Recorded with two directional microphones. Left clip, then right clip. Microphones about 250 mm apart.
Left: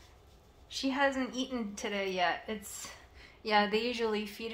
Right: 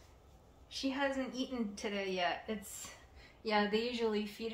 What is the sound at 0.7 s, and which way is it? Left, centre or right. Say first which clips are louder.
A woman's voice: left 6 dB; left.